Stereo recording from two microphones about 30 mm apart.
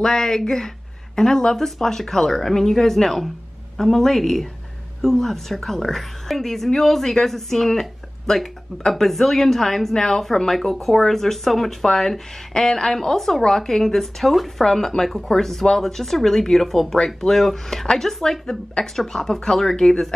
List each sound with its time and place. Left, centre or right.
0.0 s speech: centre
10.5 s speech: centre
16.9 s speech: centre
17.3 s speech: centre